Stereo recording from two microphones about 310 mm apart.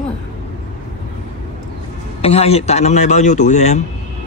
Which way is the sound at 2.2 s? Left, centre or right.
Centre.